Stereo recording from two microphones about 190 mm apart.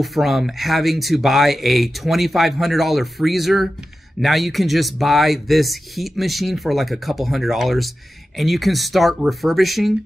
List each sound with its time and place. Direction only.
0.0 s speech: centre (ahead or behind)